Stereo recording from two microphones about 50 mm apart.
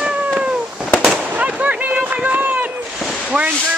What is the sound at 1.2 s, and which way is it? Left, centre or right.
Fireworks, right.